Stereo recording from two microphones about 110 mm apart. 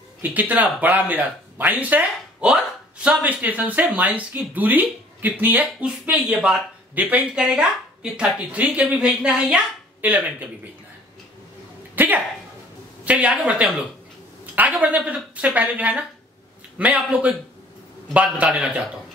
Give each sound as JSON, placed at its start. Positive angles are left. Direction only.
{"t": 0.2, "sound": "speech", "side_deg": -15}
{"t": 11.9, "sound": "a sound", "side_deg": -15}
{"t": 13.0, "sound": "speech", "side_deg": -10}